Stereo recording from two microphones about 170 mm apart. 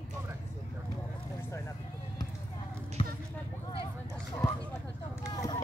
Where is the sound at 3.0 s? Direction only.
30° left (ahead or behind).